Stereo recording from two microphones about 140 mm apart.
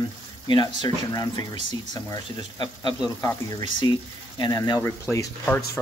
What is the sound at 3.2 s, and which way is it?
Speech, 30° left (ahead or behind).